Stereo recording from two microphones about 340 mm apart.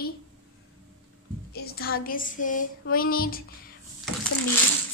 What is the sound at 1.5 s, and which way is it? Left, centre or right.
A woman's voice, left.